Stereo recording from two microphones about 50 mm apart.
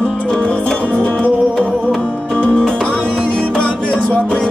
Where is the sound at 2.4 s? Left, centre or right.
Left.